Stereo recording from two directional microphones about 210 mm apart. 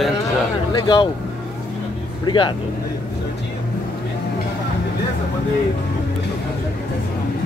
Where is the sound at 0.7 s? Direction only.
20° left (ahead or behind).